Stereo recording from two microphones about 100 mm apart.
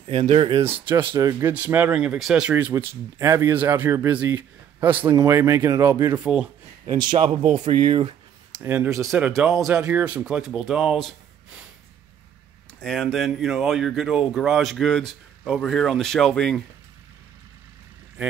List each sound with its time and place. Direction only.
0.1 s speech: 70° right (ahead or behind)
1.1 s speech: 30° right (ahead or behind)
1.5 s speech: 15° right (ahead or behind)
2.5 s speech: 25° right (ahead or behind)
6.1 s speech: 10° right (ahead or behind)
6.9 s a man's voice: 45° right (ahead or behind)
7.7 s speech: 60° right (ahead or behind)
8.6 s speech: 25° right (ahead or behind)
9.7 s speech: 10° right (ahead or behind)
12.8 s speech: 5° left (ahead or behind)